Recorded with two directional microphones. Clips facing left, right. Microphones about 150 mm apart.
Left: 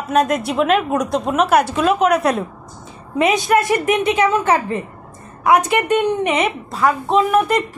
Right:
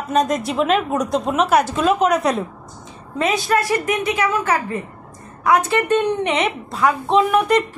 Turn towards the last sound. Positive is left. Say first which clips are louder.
# even
turn(degrees=0)  # may be behind; listen again after turning